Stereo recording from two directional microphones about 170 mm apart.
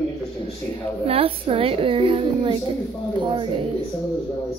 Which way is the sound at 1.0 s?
35° right (ahead or behind).